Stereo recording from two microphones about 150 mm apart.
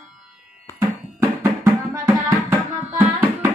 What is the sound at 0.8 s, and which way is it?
Music, 20° right (ahead or behind).